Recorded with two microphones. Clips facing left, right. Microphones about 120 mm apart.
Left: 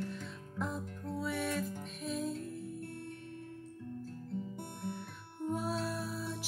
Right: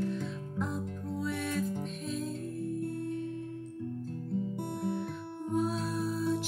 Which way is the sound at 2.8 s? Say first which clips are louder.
Right 9 dB; 45° right (ahead or behind).